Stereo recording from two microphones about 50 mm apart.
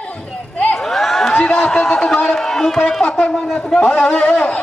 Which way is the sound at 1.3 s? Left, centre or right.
Centre.